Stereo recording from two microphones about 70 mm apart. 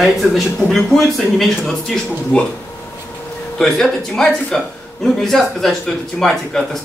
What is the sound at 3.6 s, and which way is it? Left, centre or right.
A man's voice, centre.